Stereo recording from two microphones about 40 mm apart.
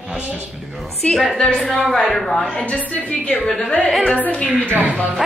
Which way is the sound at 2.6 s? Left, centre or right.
Left.